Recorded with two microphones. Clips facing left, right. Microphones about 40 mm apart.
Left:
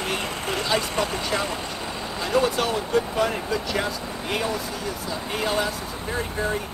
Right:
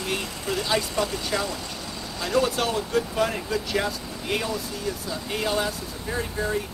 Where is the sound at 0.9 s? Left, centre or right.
Left.